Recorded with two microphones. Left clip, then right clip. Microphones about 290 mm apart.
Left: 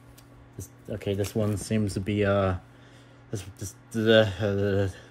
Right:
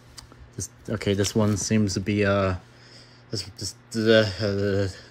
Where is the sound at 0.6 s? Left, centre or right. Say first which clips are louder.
Right 5 dB; centre.